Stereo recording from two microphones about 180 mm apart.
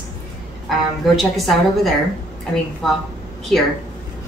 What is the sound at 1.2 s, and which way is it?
A woman's voice, centre (ahead or behind).